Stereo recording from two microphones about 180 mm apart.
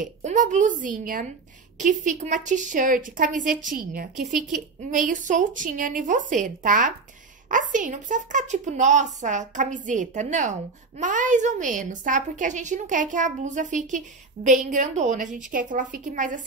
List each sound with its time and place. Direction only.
0.0 s a woman's voice: 45° right (ahead or behind)
4.2 s speech: centre (ahead or behind)
4.9 s a woman's voice: 45° right (ahead or behind)